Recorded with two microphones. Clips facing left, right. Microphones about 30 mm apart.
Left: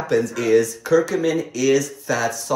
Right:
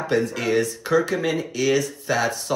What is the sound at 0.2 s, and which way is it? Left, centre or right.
Speech, right.